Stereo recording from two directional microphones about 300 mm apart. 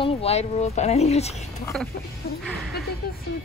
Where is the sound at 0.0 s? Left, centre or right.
Centre.